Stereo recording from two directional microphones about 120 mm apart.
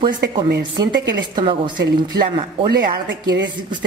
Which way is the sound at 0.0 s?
40° right (ahead or behind).